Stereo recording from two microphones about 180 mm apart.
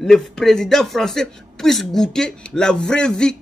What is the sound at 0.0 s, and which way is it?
Speech, centre (ahead or behind).